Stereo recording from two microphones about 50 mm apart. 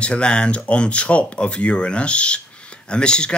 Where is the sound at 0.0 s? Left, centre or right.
Left.